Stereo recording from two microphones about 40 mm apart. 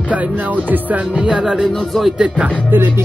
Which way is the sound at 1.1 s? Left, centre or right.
Right.